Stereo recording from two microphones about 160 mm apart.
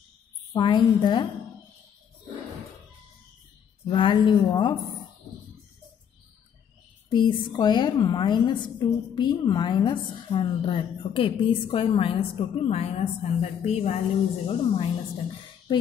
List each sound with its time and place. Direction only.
0.5 s a woman's voice: 30° left (ahead or behind)
3.8 s a woman's voice: 30° left (ahead or behind)
7.1 s a woman's voice: 30° left (ahead or behind)